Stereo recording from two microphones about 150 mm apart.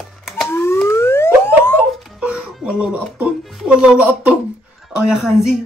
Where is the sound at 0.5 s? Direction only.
15° left (ahead or behind).